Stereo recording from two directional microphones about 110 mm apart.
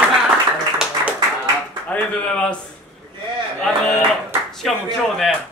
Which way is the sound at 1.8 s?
10° left (ahead or behind).